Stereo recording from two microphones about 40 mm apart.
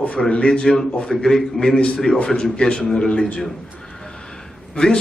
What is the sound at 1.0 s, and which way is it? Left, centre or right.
Speech, centre.